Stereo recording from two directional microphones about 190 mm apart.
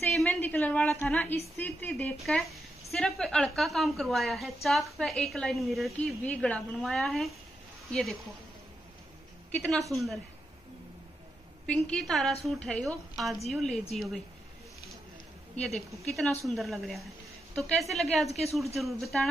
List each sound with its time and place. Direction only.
0.0 s a woman's voice: 5° left (ahead or behind)
9.5 s a woman's voice: 5° left (ahead or behind)
11.6 s a woman's voice: 5° left (ahead or behind)
15.5 s a woman's voice: centre (ahead or behind)